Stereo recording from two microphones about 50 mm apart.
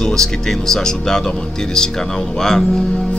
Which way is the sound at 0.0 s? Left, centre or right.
Centre.